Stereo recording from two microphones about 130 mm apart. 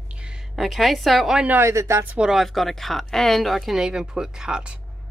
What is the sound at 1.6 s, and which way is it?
Speech, 20° right (ahead or behind).